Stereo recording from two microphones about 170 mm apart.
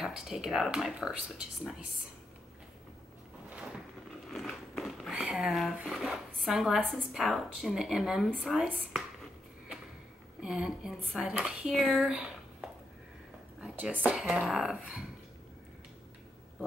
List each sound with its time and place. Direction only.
0.0 s speech: 5° right (ahead or behind)
4.3 s speech: centre (ahead or behind)
10.4 s speech: 5° right (ahead or behind)
13.6 s speech: 5° right (ahead or behind)